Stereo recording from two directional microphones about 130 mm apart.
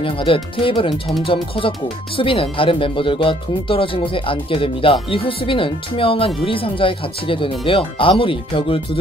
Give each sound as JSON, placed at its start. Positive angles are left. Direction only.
{"t": 0.0, "sound": "speech", "side_deg": 45}